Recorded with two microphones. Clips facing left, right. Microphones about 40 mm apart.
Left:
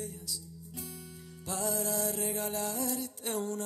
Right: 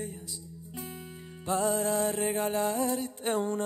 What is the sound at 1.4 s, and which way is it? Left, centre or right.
Music, right.